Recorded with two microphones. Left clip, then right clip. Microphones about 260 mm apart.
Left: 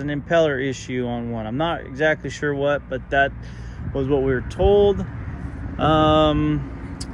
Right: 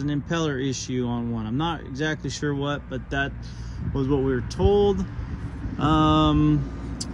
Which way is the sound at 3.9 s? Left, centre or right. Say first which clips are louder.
Left 4 dB; centre.